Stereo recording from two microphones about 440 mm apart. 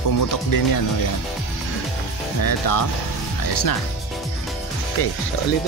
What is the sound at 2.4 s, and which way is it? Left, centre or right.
Speech, left.